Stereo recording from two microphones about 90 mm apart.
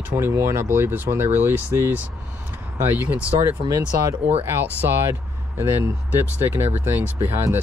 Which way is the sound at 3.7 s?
35° right (ahead or behind).